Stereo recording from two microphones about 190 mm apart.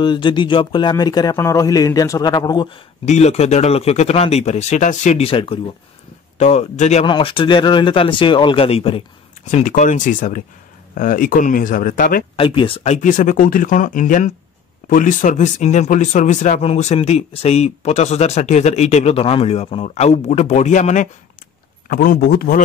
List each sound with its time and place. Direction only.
0.0 s speech: 25° left (ahead or behind)
3.1 s speech: 35° left (ahead or behind)
9.5 s speech: 40° left (ahead or behind)
12.4 s speech: 30° left (ahead or behind); by 22.6 s 50° left (ahead or behind)